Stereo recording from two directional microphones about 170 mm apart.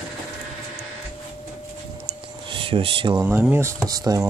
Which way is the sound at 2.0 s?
30° right (ahead or behind).